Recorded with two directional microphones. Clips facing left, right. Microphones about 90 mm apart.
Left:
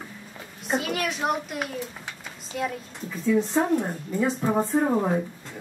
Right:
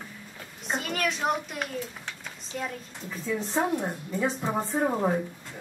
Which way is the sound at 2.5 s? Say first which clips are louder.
Left 5 dB; 5° left (ahead or behind).